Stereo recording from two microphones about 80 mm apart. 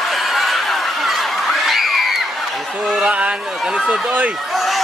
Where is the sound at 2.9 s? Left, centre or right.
Centre.